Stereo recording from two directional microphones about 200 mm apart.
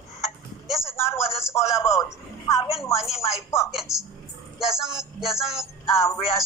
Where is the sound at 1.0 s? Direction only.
10° left (ahead or behind).